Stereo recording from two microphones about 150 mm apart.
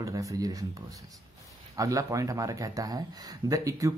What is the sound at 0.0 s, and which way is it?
Speech, 20° right (ahead or behind).